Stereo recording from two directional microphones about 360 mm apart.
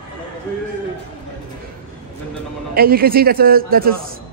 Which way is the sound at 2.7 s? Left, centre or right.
Right.